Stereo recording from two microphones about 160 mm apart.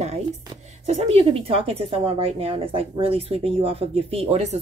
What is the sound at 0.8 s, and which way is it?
A woman's voice, 40° right (ahead or behind).